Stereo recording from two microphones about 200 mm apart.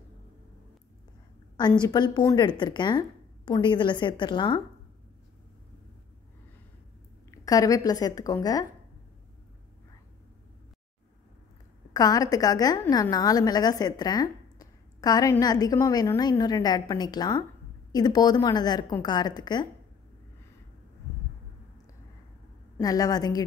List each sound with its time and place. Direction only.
1.6 s a woman's voice: 20° left (ahead or behind)
7.2 s speech: 15° left (ahead or behind)
11.9 s a woman's voice: 20° left (ahead or behind)
22.8 s speech: 20° left (ahead or behind)